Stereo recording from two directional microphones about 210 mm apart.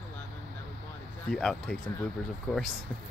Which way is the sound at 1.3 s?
5° left (ahead or behind).